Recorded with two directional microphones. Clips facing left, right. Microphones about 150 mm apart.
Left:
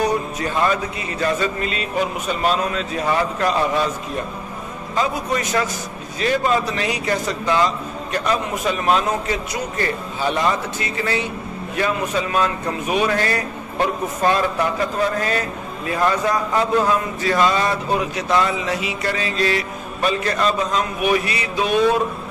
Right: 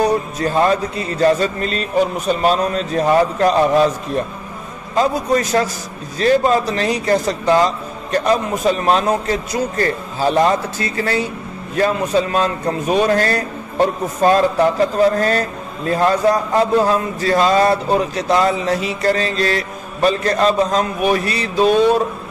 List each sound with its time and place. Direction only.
0.4 s a man's voice: 35° right (ahead or behind)
4.9 s a man's voice: 35° right (ahead or behind)